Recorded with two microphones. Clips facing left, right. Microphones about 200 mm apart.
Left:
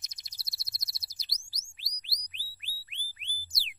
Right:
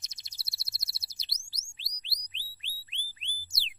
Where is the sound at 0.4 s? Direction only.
30° right (ahead or behind).